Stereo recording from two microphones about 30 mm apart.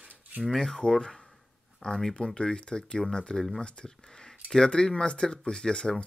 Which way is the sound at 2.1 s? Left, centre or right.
Left.